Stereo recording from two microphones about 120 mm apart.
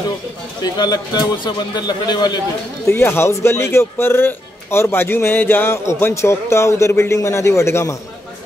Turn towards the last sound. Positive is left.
turn(degrees=25)  # may be behind; listen again after turning